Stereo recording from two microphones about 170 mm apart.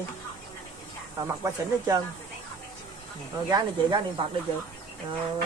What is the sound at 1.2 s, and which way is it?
Speech, 20° right (ahead or behind).